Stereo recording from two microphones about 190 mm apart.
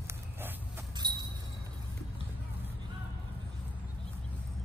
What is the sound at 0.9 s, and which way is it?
Vehicle, 20° right (ahead or behind).